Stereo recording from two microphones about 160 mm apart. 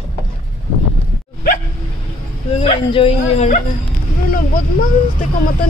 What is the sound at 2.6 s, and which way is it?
Speech, 35° left (ahead or behind).